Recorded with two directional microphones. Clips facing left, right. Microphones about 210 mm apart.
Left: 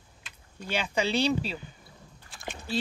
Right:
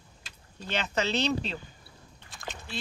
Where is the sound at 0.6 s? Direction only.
10° left (ahead or behind).